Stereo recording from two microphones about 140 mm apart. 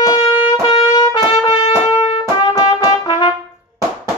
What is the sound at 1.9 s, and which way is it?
Music, 30° left (ahead or behind).